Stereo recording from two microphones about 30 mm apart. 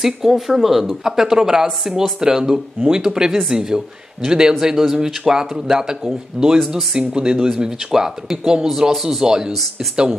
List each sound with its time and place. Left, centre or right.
0.0 s speech: centre
8.9 s speech: centre
9.2 s speech: right